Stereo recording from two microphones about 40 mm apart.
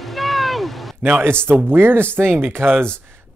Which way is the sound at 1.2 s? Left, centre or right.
Right.